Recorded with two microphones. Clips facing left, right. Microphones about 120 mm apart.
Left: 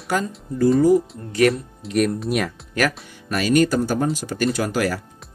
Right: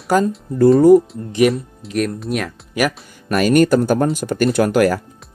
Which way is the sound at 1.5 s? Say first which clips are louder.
Even; centre (ahead or behind).